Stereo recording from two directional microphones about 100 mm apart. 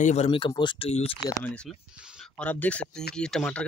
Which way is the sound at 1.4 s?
10° left (ahead or behind).